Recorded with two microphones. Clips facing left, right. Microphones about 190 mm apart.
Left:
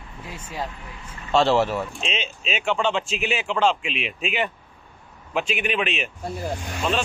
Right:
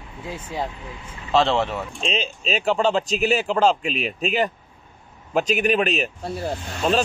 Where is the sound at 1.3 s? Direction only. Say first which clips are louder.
Left 1 dB; centre (ahead or behind).